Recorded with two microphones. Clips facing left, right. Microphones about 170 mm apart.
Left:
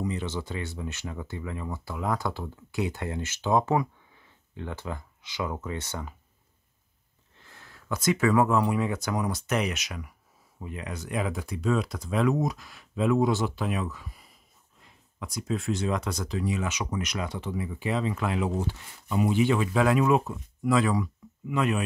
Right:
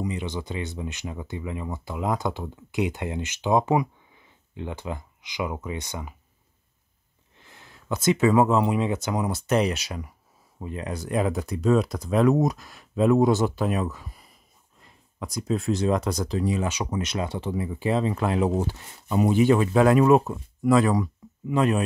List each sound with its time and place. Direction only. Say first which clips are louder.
0.0 s speech: right 1 dB; 15° right (ahead or behind)
7.3 s speech: right 1 dB; 20° right (ahead or behind); by 21.8 s 35° right (ahead or behind)